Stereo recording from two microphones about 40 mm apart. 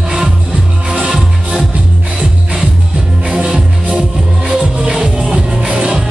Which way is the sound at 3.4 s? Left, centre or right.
Right.